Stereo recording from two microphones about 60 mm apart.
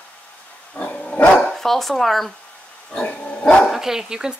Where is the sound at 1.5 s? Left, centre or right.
Centre.